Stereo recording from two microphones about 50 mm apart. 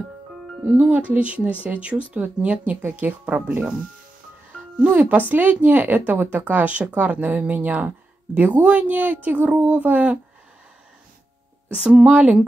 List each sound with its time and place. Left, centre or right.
0.7 s speech: right
4.7 s speech: right
11.7 s speech: centre
12.1 s speech: right